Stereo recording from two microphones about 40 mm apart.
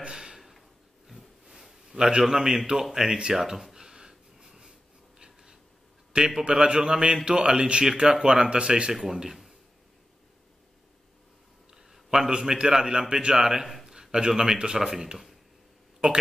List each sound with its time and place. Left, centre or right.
0.0 s a sound: centre
0.4 s a sound: centre
1.5 s a man's voice: centre
3.7 s wheeze: centre
5.2 s writing: centre
6.1 s a man's voice: centre
8.9 s a man's voice: centre
11.7 s a sound: centre
12.3 s speech: centre